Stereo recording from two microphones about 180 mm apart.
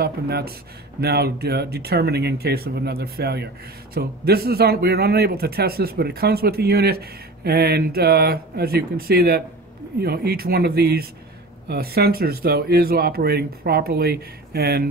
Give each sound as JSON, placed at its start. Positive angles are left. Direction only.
{"t": 0.0, "sound": "a man's voice", "side_deg": -60}